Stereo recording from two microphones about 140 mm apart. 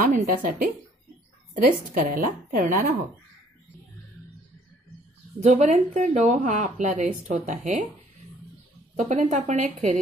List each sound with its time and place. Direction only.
0.0 s a woman's voice: 85° right
1.5 s a woman's voice: 75° right (ahead or behind)
5.4 s a woman's voice: 55° right (ahead or behind)
8.9 s speech: 60° right (ahead or behind)